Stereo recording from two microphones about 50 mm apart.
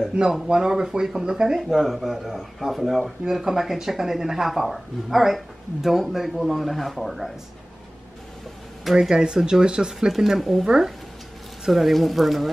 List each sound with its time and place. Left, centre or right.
0.2 s speech: right; by 7.3 s centre
8.9 s speech: centre
9.9 s speech: centre